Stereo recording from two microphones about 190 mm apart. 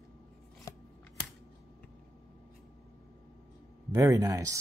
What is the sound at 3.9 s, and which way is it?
Speech, 15° right (ahead or behind).